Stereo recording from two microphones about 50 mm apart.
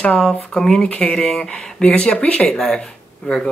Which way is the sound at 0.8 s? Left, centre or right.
Left.